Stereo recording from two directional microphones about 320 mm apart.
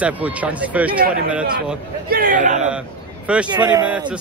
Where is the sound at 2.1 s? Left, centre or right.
Right.